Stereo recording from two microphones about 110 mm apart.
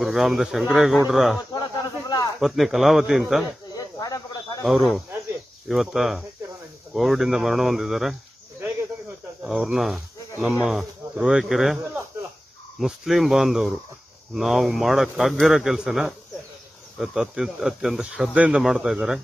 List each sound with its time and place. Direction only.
0.0 s speech: centre (ahead or behind)
1.5 s snake: 40° left (ahead or behind)
2.4 s speech: centre (ahead or behind)
3.7 s a sound: 35° left (ahead or behind)
4.6 s speech: centre (ahead or behind)
9.4 s speech: 5° right (ahead or behind)
12.8 s speech: centre (ahead or behind)